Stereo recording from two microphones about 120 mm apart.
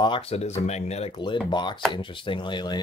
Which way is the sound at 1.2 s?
40° left (ahead or behind).